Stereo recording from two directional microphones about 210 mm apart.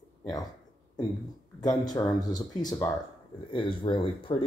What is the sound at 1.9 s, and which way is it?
Speech, 20° left (ahead or behind).